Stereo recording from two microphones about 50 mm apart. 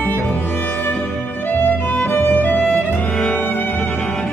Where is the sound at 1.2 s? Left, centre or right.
Left.